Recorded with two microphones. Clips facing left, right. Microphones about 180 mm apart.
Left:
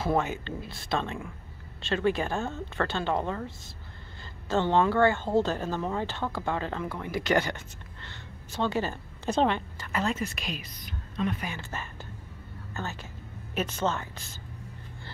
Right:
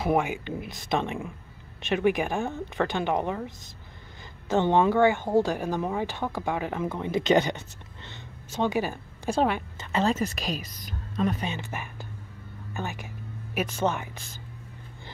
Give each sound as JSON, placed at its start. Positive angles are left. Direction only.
{"t": 0.0, "sound": "a woman's voice", "side_deg": -15}
{"t": 9.8, "sound": "speech", "side_deg": -25}
{"t": 10.1, "sound": "speech", "side_deg": -40}
{"t": 11.4, "sound": "a woman's voice", "side_deg": -20}